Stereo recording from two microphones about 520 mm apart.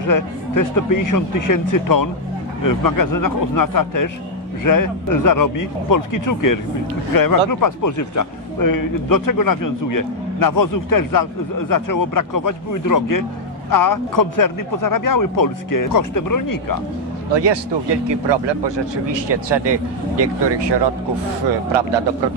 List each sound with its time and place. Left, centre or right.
0.0 s a man's voice: left
17.3 s speech: right